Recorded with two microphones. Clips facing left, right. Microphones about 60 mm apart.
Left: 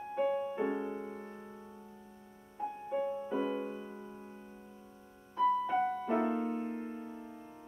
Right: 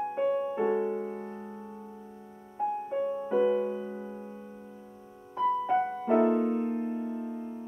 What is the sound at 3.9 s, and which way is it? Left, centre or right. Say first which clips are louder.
Music: right 8 dB; right.